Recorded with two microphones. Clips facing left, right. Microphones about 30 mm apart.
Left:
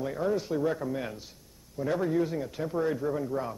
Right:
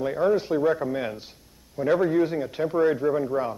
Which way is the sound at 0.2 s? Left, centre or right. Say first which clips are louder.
Right 7 dB; right.